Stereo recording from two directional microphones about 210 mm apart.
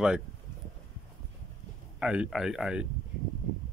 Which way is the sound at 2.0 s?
5° right (ahead or behind).